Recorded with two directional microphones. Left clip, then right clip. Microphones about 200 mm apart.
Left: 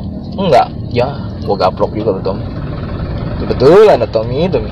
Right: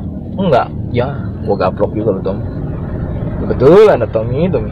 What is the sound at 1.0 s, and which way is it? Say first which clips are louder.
A man's voice: left 1 dB; 15° right (ahead or behind).